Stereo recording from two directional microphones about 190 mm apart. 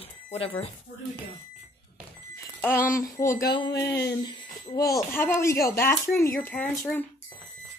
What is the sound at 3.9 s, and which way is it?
Speech, 65° left (ahead or behind).